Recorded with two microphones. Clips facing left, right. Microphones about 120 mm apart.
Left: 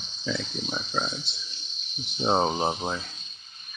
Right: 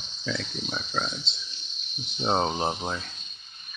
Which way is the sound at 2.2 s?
10° left (ahead or behind).